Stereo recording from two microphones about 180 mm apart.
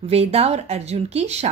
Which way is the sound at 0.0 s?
35° right (ahead or behind).